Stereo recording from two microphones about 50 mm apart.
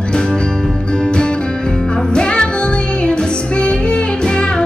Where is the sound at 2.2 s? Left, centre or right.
Centre.